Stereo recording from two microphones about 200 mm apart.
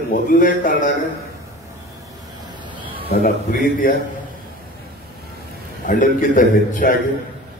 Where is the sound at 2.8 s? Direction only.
25° right (ahead or behind).